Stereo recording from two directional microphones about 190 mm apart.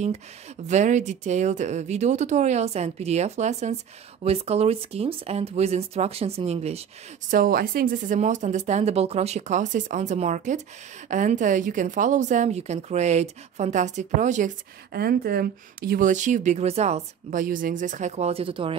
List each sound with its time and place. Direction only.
0.7 s speech: 40° right (ahead or behind)
7.2 s speech: 50° right (ahead or behind); by 18.8 s 30° right (ahead or behind)